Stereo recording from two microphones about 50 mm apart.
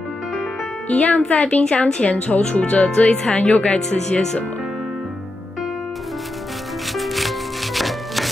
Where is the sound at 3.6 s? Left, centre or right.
Centre.